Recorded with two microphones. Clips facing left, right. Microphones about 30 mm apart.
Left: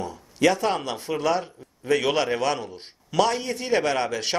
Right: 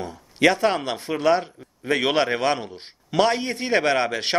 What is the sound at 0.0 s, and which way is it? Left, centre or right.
Speech, right.